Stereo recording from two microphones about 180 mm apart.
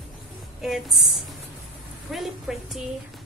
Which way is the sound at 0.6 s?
Centre (ahead or behind).